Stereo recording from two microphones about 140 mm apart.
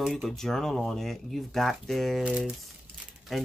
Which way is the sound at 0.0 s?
Centre (ahead or behind).